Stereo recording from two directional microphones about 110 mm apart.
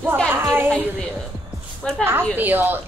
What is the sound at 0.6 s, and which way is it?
A woman's voice, 10° left (ahead or behind).